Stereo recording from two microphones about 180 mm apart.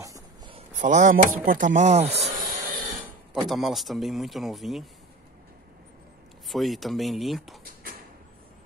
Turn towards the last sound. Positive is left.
turn(degrees=0)  # may be behind; listen again after turning